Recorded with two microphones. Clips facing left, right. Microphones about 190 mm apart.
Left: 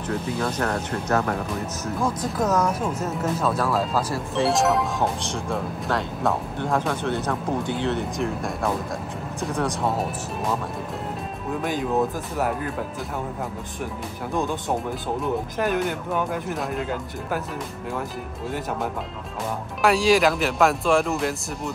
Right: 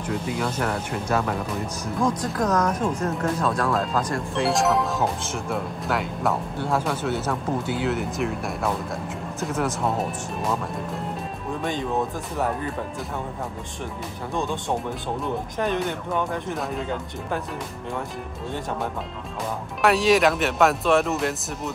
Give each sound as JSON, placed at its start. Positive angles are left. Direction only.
{"t": 0.4, "sound": "speech", "side_deg": -10}
{"t": 2.0, "sound": "speech", "side_deg": 5}
{"t": 11.6, "sound": "speech", "side_deg": 5}
{"t": 14.3, "sound": "speech", "side_deg": 5}
{"t": 19.8, "sound": "speech", "side_deg": 0}